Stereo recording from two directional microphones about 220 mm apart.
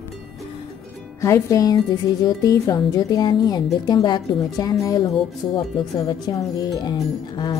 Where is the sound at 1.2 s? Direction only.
15° left (ahead or behind).